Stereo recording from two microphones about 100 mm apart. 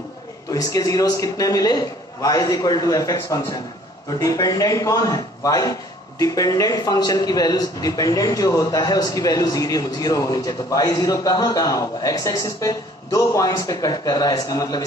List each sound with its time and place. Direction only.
0.5 s a man's voice: 35° left (ahead or behind)